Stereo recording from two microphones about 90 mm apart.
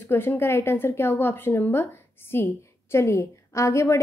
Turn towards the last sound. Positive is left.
turn(degrees=35)  # may be behind; listen again after turning